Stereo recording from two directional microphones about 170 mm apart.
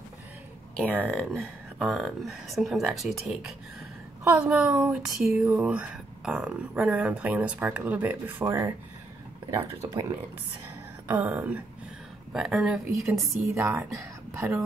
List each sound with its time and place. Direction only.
0.7 s speech: 10° left (ahead or behind); by 9.8 s 15° right (ahead or behind)
11.1 s speech: 10° right (ahead or behind)
13.6 s speech: 15° right (ahead or behind)